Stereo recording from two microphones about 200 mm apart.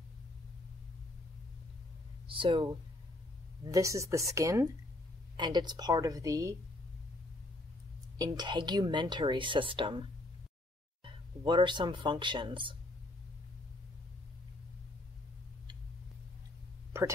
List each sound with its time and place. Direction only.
2.2 s speech: 25° right (ahead or behind)
3.7 s speech: 15° right (ahead or behind)
8.2 s speech: 20° right (ahead or behind)
11.1 s speech: 25° right (ahead or behind)